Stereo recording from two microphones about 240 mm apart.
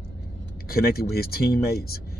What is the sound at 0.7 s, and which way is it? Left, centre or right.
Speech, left.